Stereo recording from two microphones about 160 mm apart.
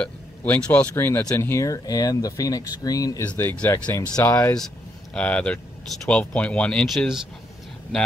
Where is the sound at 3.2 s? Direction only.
10° left (ahead or behind).